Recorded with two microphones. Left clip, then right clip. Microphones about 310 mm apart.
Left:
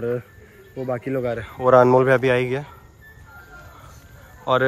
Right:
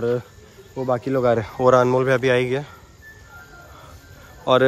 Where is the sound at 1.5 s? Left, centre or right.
Centre.